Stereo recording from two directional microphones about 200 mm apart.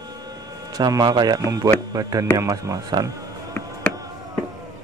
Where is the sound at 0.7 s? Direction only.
20° right (ahead or behind).